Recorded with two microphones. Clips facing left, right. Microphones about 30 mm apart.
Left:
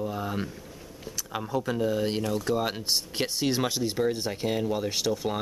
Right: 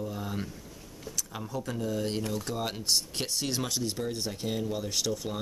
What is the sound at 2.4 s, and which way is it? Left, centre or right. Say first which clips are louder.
Speech: left 4 dB; centre.